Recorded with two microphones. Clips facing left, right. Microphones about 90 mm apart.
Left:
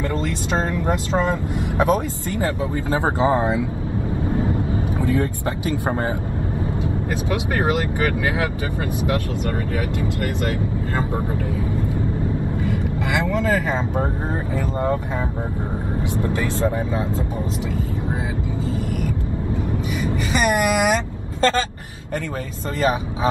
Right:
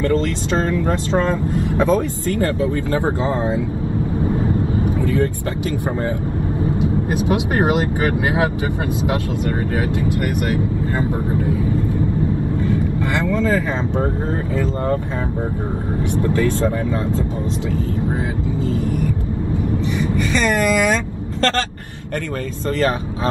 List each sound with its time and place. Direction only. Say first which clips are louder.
0.7 s speech: right 3 dB; 15° left (ahead or behind)
4.9 s vehicle: left 2 dB; 20° left (ahead or behind)
6.8 s speech: right 5 dB; 25° right (ahead or behind)
9.8 s speech: right 4 dB; 20° right (ahead or behind)
16.2 s speech: right 5 dB; 20° left (ahead or behind)
20.3 s speech: right 1 dB; 15° left (ahead or behind)